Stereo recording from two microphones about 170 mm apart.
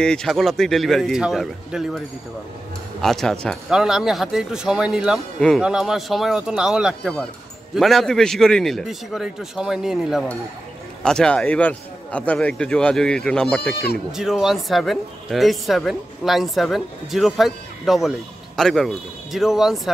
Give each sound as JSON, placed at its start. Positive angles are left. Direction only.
{"t": 0.0, "sound": "speech", "side_deg": 5}
{"t": 13.6, "sound": "speech", "side_deg": 65}
{"t": 14.1, "sound": "speech", "side_deg": -5}